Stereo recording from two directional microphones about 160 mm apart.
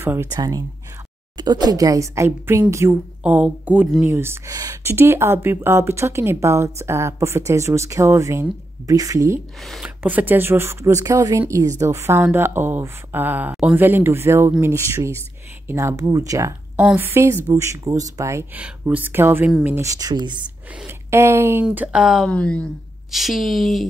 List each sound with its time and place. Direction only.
0.0 s a woman's voice: 15° right (ahead or behind)
9.7 s a woman's voice: 5° right (ahead or behind)
18.6 s a woman's voice: 10° right (ahead or behind)
22.3 s speech: 5° left (ahead or behind)